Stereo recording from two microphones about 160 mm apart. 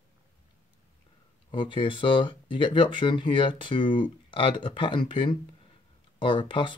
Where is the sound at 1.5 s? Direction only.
30° left (ahead or behind).